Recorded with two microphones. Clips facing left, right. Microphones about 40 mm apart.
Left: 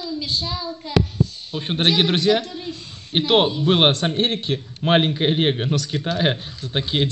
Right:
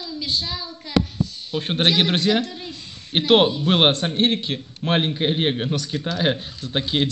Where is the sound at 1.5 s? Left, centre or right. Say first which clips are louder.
Right 3 dB; centre.